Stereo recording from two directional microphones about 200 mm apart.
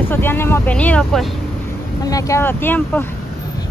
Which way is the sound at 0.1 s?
10° left (ahead or behind).